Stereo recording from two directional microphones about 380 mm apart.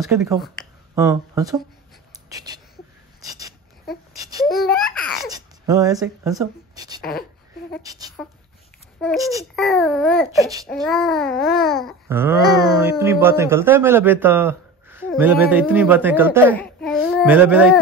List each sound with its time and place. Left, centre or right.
0.0 s a man's voice: centre
3.3 s a sound: centre
4.1 s babbling: centre
7.0 s speech: left
7.8 s a man's voice: centre